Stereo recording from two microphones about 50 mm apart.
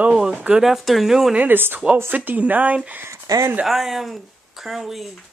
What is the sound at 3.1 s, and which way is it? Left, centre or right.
Speech, right.